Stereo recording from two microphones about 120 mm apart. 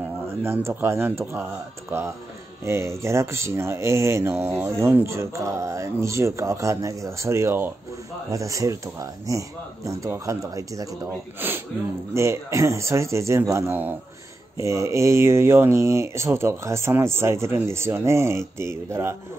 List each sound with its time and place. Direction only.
0.7 s speech: 20° right (ahead or behind)
11.3 s speech: 15° right (ahead or behind)